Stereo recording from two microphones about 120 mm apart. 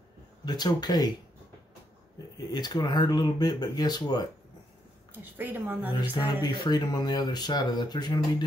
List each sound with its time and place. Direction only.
0.5 s speech: 35° left (ahead or behind)
2.3 s speech: 35° left (ahead or behind)
5.2 s a woman's voice: 15° right (ahead or behind)
6.1 s speech: 35° left (ahead or behind)